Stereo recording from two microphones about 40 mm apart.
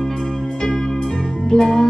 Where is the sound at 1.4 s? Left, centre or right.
Centre.